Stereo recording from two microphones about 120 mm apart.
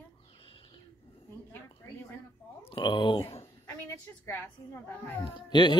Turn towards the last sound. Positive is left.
turn(degrees=40)  # may be behind; listen again after turning